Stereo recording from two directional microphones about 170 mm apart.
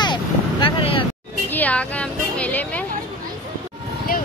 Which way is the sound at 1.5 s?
10° left (ahead or behind).